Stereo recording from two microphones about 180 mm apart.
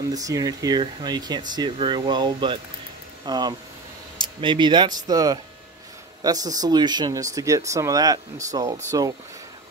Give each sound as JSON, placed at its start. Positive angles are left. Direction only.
{"t": 0.1, "sound": "speech", "side_deg": -20}